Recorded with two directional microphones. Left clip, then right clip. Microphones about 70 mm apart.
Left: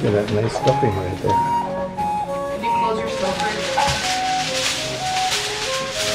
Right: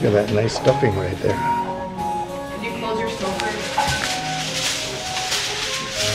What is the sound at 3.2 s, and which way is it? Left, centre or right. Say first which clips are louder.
Music: left 2 dB; left.